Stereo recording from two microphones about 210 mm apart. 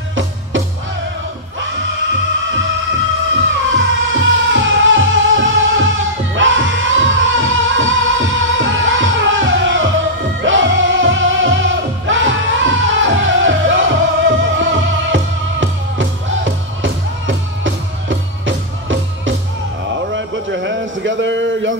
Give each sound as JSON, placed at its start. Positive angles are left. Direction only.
{"t": 0.1, "sound": "music", "side_deg": -65}
{"t": 3.3, "sound": "music", "side_deg": -65}
{"t": 20.1, "sound": "a sound", "side_deg": -60}